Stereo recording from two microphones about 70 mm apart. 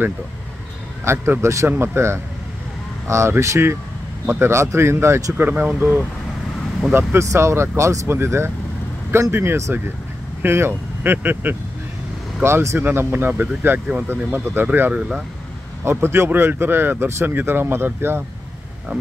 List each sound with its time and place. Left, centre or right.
1.0 s speech: right
5.4 s speech: right
7.2 s speech: right
8.1 s speech: right
15.0 s speech: centre
15.8 s speech: right